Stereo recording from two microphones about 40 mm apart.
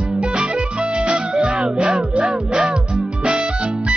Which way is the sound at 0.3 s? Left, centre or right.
Right.